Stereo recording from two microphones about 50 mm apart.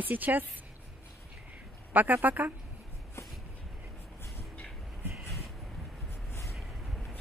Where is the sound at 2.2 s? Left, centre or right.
Right.